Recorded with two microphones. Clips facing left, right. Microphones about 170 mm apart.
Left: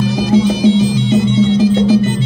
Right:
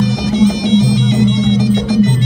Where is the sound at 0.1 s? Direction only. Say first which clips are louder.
Even; 20° right (ahead or behind).